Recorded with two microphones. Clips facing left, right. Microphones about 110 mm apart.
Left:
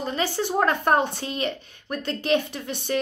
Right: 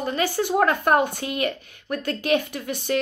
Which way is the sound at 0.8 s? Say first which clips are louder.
Right 1 dB; 25° left (ahead or behind).